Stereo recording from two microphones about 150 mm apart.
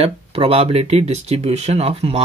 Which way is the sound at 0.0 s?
40° right (ahead or behind).